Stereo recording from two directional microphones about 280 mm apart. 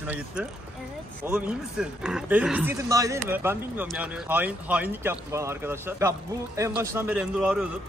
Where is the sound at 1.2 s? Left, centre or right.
Centre.